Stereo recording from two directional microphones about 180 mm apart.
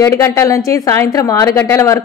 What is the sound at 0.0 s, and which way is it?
A woman's voice, 15° left (ahead or behind).